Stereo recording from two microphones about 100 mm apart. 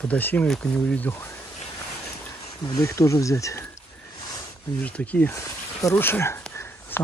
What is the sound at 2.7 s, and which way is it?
Speech, 30° left (ahead or behind).